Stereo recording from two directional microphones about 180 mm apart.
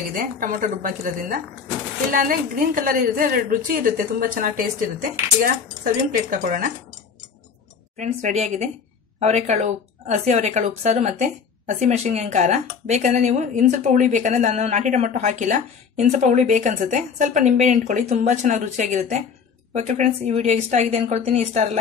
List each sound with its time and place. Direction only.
0.1 s a woman's voice: 50° right (ahead or behind)
6.3 s a woman's voice: 50° right (ahead or behind)
8.0 s a woman's voice: 40° right (ahead or behind)